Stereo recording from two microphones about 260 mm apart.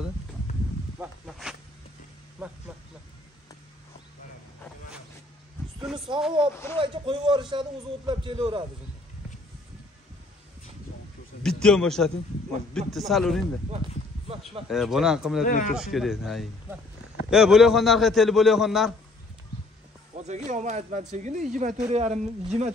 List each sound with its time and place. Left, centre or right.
0.9 s snake: centre
2.4 s a sound: centre
5.9 s a sound: centre
6.5 s a sound: centre
6.8 s a man's voice: centre
11.4 s a man's voice: centre
14.7 s a man's voice: centre
15.4 s speech: left
15.7 s a man's voice: centre
20.2 s speech: right